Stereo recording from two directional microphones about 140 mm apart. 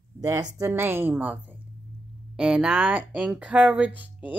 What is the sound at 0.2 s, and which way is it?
Speech, 25° right (ahead or behind).